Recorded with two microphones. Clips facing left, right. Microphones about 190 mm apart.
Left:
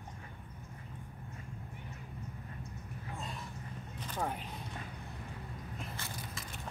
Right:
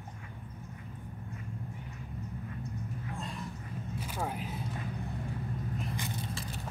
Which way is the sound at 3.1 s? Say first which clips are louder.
Right 4 dB; centre (ahead or behind).